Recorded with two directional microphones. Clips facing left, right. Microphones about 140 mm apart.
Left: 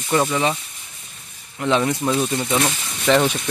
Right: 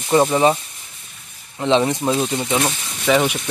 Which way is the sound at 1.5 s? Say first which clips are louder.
Right 2 dB; 25° right (ahead or behind).